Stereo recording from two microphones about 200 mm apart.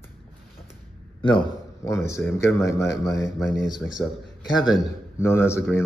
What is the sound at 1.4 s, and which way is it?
Speech, 15° left (ahead or behind).